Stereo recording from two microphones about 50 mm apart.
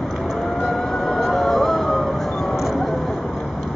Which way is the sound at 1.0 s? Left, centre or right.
Centre.